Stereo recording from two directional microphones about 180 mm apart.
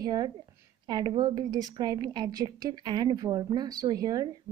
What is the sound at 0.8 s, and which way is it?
A woman's voice, 20° right (ahead or behind).